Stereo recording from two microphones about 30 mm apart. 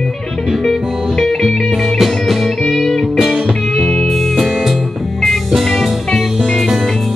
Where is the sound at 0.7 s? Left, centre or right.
Centre.